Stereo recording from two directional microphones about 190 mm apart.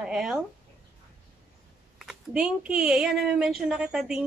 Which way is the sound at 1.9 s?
5° right (ahead or behind).